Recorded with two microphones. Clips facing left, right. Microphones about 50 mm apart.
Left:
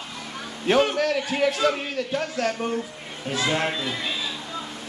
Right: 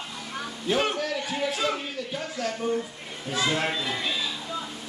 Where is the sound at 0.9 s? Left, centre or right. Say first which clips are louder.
Left 6 dB; left.